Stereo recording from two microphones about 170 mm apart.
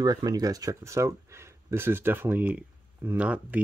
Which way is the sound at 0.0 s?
25° right (ahead or behind).